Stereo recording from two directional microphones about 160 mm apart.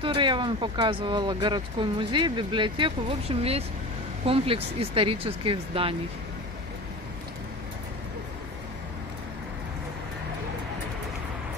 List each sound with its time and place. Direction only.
0.0 s speech: 30° right (ahead or behind)